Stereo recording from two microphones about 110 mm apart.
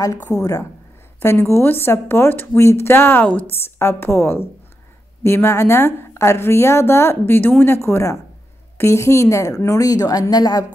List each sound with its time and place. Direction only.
0.3 s a woman's voice: 30° left (ahead or behind)